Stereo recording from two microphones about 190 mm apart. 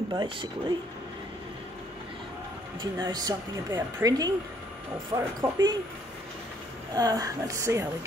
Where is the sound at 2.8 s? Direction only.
20° right (ahead or behind).